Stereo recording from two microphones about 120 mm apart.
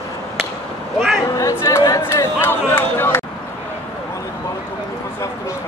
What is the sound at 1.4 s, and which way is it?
Speech, 25° left (ahead or behind).